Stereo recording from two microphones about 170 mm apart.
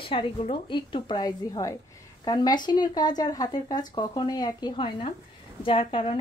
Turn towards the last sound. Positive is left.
turn(degrees=30)  # may be behind; listen again after turning